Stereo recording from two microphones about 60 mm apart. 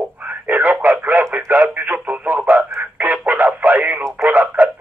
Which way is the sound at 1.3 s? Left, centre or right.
Right.